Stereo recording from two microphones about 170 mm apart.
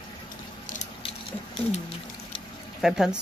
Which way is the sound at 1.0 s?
35° left (ahead or behind).